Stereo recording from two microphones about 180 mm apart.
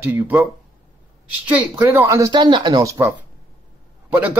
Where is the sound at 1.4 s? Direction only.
10° right (ahead or behind).